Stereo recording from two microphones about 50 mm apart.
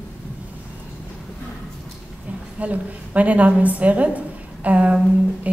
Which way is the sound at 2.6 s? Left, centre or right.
Right.